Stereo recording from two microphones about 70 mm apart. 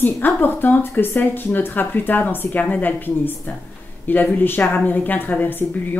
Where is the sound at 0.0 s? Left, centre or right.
Left.